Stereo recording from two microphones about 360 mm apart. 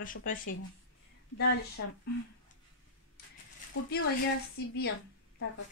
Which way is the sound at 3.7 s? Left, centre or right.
Left.